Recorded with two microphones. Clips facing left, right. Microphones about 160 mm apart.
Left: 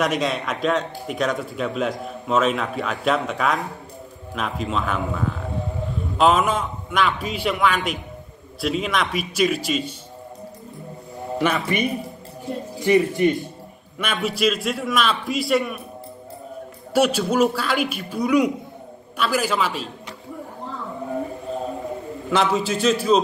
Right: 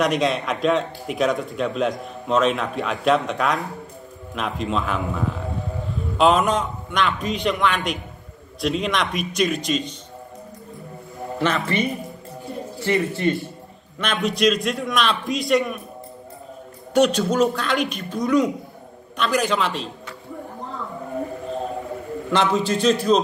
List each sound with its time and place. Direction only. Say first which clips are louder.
0.0 s a man's voice: right 2 dB; centre (ahead or behind)
11.3 s a man's voice: even; 15° left (ahead or behind)
16.9 s a man's voice: right 1 dB; 5° left (ahead or behind)
22.3 s a man's voice: even; 5° left (ahead or behind)